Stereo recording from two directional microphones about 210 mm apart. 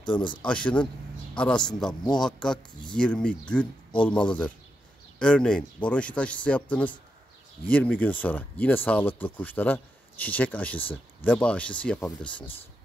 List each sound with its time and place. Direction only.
0.2 s speech: 20° left (ahead or behind)
0.5 s a man's voice: 5° left (ahead or behind)